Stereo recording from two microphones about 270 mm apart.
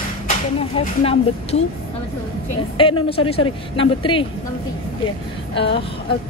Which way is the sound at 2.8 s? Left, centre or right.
Centre.